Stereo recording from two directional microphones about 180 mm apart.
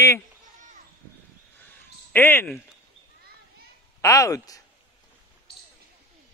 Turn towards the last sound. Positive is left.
turn(degrees=20)  # may be behind; listen again after turning